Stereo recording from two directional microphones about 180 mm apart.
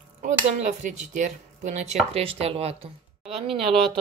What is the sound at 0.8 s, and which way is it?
Speech, 45° right (ahead or behind).